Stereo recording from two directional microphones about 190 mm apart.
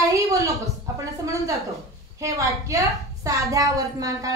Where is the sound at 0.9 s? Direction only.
15° right (ahead or behind).